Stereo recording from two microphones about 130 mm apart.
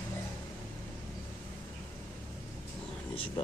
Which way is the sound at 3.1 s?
40° left (ahead or behind).